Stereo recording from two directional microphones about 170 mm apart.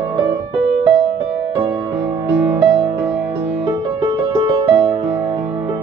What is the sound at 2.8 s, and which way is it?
Music, 15° right (ahead or behind).